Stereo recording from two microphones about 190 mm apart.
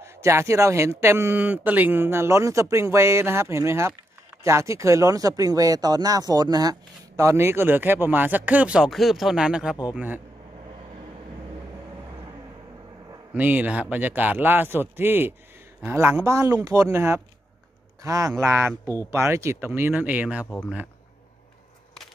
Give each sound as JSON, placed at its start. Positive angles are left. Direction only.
{"t": 0.0, "sound": "speech", "side_deg": -15}
{"t": 13.3, "sound": "speech", "side_deg": -10}
{"t": 20.4, "sound": "speech", "side_deg": 10}